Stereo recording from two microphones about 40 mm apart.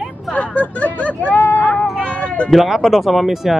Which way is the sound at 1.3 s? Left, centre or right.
Left.